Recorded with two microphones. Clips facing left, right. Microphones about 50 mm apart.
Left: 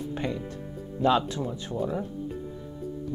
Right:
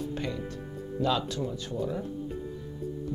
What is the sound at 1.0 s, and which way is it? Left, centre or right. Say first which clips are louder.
Speech: left 5 dB; left.